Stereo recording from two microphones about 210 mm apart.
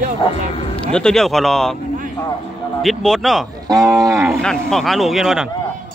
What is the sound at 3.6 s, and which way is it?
Speech, 15° right (ahead or behind).